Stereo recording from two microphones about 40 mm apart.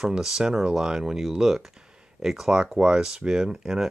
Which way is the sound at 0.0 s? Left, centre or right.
Centre.